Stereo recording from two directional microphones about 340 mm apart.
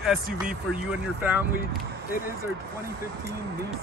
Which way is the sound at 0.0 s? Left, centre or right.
Centre.